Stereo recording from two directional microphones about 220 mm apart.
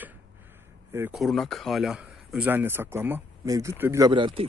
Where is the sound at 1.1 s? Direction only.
Centre (ahead or behind); by 4.4 s 20° right (ahead or behind).